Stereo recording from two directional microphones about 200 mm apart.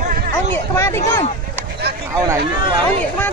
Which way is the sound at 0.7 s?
15° left (ahead or behind).